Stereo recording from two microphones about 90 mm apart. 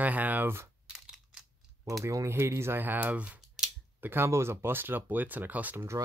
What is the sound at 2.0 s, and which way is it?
Speech, 35° right (ahead or behind).